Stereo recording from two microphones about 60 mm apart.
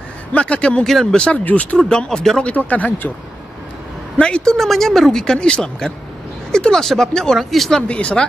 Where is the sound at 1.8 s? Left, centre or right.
Centre.